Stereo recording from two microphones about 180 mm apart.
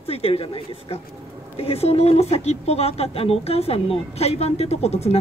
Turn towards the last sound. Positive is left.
turn(degrees=35)  # may be behind; listen again after turning